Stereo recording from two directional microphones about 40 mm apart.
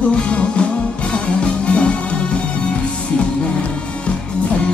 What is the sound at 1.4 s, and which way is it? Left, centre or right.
Music, left.